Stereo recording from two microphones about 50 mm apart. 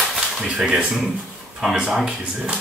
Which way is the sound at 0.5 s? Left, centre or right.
Centre.